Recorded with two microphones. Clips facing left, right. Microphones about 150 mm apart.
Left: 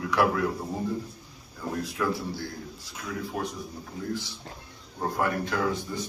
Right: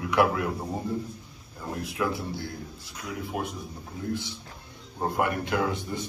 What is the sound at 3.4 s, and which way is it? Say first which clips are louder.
Speech: even; 20° right (ahead or behind).